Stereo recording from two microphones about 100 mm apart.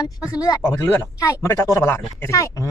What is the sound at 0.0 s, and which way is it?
Speech, 40° left (ahead or behind).